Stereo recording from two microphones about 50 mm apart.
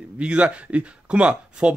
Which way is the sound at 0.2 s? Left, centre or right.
Right.